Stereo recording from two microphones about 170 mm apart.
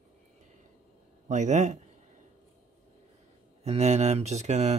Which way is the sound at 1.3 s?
45° right (ahead or behind).